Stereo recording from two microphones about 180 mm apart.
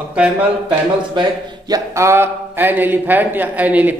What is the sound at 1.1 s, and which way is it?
A man's voice, 20° right (ahead or behind).